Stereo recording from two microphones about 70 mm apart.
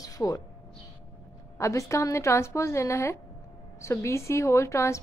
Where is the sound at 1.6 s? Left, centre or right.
Left.